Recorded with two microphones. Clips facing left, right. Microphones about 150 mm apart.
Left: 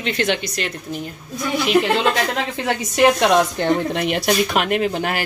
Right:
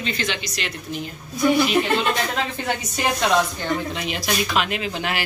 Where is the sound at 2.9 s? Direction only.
65° left (ahead or behind).